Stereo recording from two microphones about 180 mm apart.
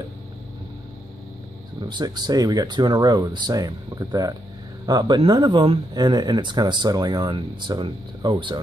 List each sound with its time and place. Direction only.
1.8 s speech: 25° right (ahead or behind)